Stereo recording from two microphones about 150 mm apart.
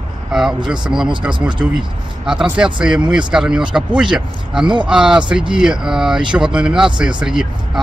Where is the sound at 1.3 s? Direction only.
30° right (ahead or behind).